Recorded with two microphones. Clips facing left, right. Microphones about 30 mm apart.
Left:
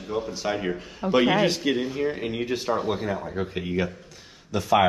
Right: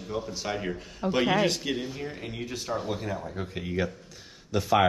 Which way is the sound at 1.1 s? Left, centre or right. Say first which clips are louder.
Left 4 dB; centre.